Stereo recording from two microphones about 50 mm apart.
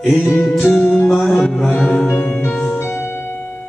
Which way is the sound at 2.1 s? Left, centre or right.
Left.